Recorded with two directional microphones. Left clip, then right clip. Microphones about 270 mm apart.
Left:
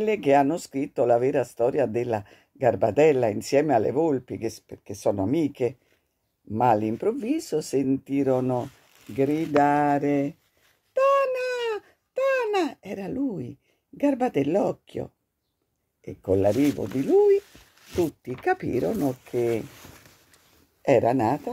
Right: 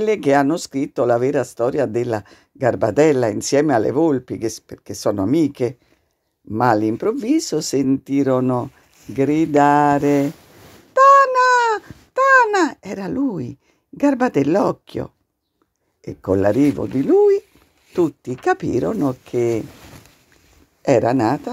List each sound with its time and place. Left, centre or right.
0.0 s speech: centre
10.9 s a sound: centre
16.0 s speech: centre
18.0 s speech: centre
20.9 s speech: centre